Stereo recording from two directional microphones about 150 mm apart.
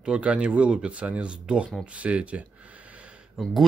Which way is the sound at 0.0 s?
5° right (ahead or behind).